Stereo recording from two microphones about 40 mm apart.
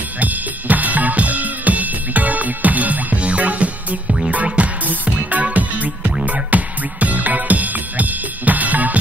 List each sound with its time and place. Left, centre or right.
0.2 s drum kit: right
4.8 s music: right